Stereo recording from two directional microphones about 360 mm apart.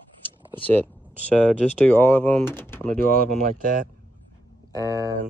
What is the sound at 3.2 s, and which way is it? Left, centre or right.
Speech, right.